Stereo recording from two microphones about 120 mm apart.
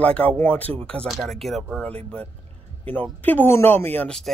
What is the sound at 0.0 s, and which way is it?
Speech, 10° left (ahead or behind).